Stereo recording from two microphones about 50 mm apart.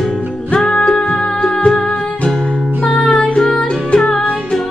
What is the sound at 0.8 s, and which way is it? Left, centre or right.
Music, centre.